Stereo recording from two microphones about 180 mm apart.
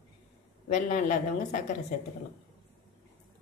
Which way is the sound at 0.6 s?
45° left (ahead or behind).